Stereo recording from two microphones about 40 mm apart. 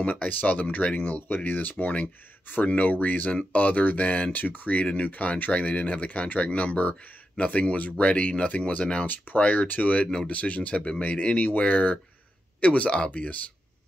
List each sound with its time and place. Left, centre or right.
0.2 s speech: left
0.9 s speech: left
7.3 s speech: left
9.0 s speech: left
9.4 s speech: left